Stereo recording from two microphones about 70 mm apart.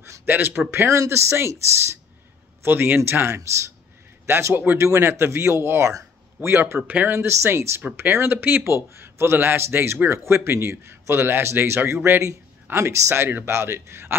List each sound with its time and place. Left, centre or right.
0.3 s speech: right
2.6 s a man's voice: right
6.8 s speech: right
7.1 s speech: right